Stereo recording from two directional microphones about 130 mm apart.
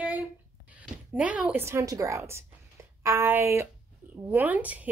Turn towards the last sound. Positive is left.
turn(degrees=-10)  # may be behind; listen again after turning